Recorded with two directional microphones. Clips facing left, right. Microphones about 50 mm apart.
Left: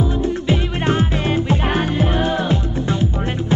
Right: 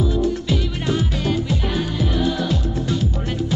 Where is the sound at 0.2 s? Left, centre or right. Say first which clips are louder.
Left 2 dB; left.